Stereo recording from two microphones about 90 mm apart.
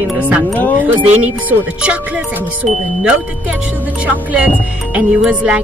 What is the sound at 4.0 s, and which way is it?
Speech, 15° right (ahead or behind).